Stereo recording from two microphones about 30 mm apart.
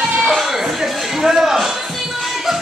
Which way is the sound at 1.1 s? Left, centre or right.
Centre.